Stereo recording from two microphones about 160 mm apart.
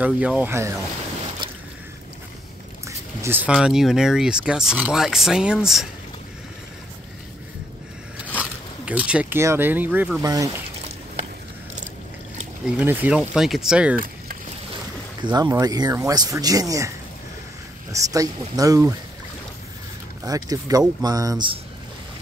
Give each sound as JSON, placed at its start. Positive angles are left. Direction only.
{"t": 0.0, "sound": "speech", "side_deg": -10}
{"t": 2.9, "sound": "a sound", "side_deg": -15}
{"t": 3.5, "sound": "speech", "side_deg": 0}
{"t": 8.4, "sound": "speech", "side_deg": -10}
{"t": 10.2, "sound": "speech", "side_deg": -20}
{"t": 12.6, "sound": "speech", "side_deg": -10}
{"t": 15.2, "sound": "speech", "side_deg": -25}
{"t": 17.9, "sound": "speech", "side_deg": -20}
{"t": 20.2, "sound": "speech", "side_deg": -20}